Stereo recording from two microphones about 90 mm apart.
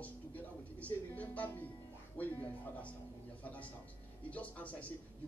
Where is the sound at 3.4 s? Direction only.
15° left (ahead or behind).